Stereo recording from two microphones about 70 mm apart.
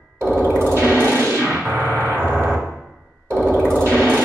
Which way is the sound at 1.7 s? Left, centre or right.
Right.